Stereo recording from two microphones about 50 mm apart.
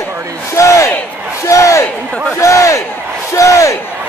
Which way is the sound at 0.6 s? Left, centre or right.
Left.